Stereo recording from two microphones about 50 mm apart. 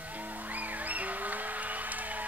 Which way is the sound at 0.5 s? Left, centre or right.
Right.